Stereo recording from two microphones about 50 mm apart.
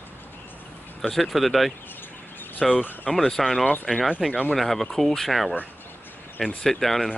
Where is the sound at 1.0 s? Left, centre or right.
Centre.